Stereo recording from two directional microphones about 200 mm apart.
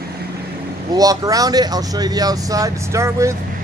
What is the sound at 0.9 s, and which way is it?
A man's voice, 20° right (ahead or behind).